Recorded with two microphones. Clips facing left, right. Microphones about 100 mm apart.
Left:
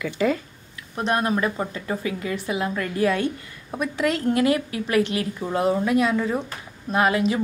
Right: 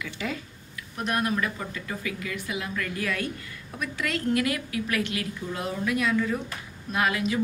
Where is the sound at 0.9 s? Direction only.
30° left (ahead or behind).